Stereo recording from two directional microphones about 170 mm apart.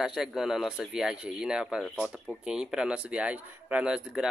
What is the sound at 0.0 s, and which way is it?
Speech, centre (ahead or behind).